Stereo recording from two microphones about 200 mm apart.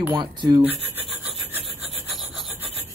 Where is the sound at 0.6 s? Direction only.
10° right (ahead or behind).